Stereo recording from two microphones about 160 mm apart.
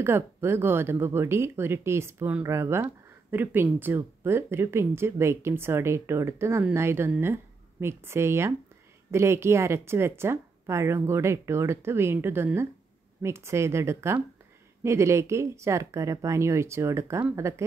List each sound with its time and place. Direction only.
0.0 s speech: 15° right (ahead or behind)